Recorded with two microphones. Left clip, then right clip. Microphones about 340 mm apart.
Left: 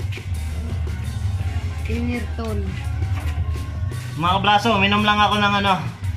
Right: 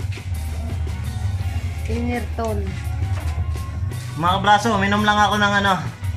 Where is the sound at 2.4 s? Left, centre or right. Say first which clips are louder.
Right 8 dB; right.